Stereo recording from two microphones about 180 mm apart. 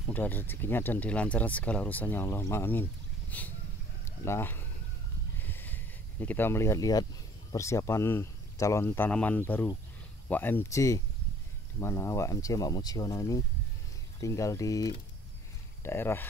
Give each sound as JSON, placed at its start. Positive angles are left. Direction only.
{"t": 0.1, "sound": "speech", "side_deg": 10}
{"t": 4.0, "sound": "a sound", "side_deg": 15}
{"t": 7.5, "sound": "speech", "side_deg": 15}